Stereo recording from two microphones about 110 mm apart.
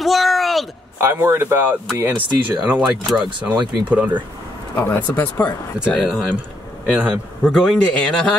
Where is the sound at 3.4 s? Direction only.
15° right (ahead or behind).